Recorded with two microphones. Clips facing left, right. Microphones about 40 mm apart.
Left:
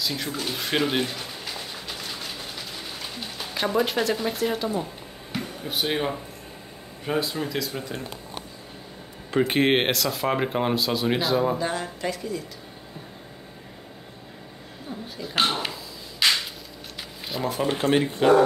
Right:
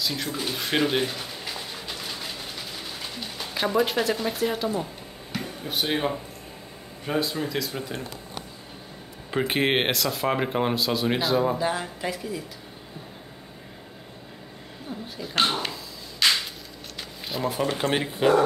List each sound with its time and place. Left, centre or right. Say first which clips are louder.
0.0 s a sound: even; centre
5.6 s speech: even; centre
9.3 s speech: left 3 dB; centre
14.9 s dog: even; centre
17.3 s speech: even; centre
17.8 s speech: left 6 dB; right